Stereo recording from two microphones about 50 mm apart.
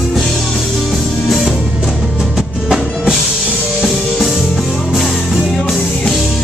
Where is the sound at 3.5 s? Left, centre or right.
Centre.